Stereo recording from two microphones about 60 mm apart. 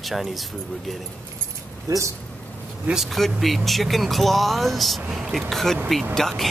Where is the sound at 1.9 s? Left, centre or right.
Right.